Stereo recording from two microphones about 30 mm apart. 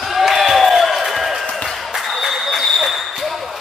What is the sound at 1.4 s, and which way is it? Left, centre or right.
Applause, centre.